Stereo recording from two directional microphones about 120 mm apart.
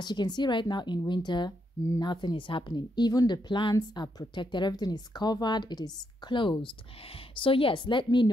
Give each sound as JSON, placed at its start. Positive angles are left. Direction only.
{"t": 0.0, "sound": "a woman's voice", "side_deg": 35}